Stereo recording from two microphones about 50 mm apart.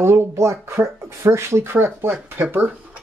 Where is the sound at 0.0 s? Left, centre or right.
Right.